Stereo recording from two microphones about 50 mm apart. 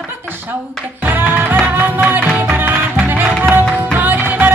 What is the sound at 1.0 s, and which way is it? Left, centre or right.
Music, right.